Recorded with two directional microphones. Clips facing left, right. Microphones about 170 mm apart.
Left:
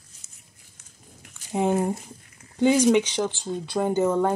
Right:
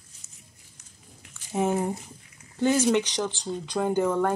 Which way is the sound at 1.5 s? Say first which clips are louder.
Left 2 dB; 15° left (ahead or behind).